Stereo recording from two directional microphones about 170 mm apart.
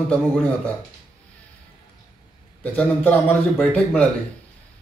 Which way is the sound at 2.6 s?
5° left (ahead or behind).